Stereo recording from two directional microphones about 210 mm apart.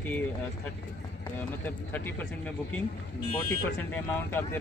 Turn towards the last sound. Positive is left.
turn(degrees=10)  # may be behind; listen again after turning